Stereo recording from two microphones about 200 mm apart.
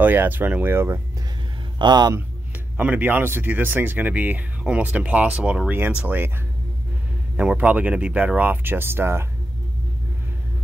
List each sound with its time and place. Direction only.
0.0 s a man's voice: 10° right (ahead or behind)
2.8 s speech: 10° right (ahead or behind)
7.3 s speech: 5° right (ahead or behind)